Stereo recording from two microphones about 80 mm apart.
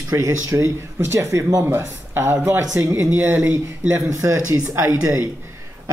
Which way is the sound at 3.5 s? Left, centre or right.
Right.